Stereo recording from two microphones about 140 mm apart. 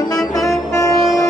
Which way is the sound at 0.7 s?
25° left (ahead or behind).